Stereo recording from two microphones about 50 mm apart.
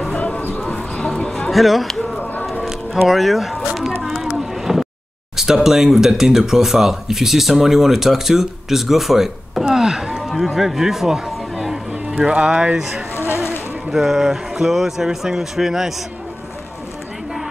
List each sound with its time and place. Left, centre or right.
0.2 s a sound: left
0.7 s bird: centre
1.5 s speech: centre
3.1 s speech: centre
4.0 s a sound: centre
5.3 s speech: centre
12.7 s speech: centre